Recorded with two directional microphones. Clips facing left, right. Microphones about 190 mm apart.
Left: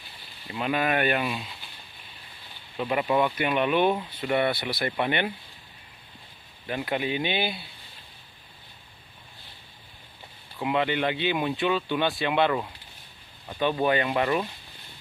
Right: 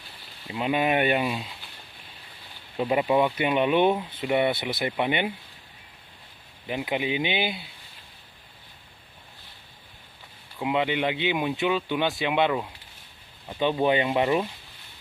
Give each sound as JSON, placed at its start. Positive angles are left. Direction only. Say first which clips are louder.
{"t": 0.5, "sound": "speech", "louder": "right 2 dB", "side_deg": -15}
{"t": 2.8, "sound": "speech", "louder": "right 2 dB", "side_deg": -20}
{"t": 6.6, "sound": "speech", "louder": "right 1 dB", "side_deg": -15}
{"t": 10.6, "sound": "speech", "louder": "even", "side_deg": -15}